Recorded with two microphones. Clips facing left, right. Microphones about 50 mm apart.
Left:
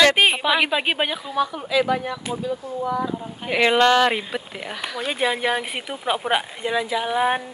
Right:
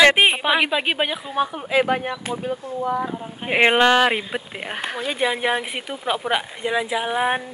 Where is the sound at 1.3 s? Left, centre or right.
Right.